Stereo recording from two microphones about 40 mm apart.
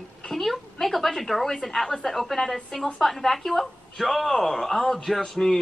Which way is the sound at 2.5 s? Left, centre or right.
Centre.